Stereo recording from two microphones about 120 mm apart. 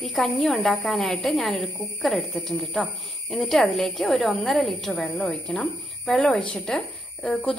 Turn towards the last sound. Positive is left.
turn(degrees=10)  # may be behind; listen again after turning